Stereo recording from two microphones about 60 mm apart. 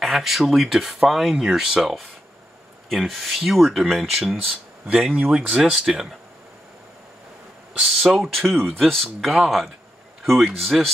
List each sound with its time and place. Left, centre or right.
0.0 s speech: centre
4.5 s speech: centre
8.0 s speech: centre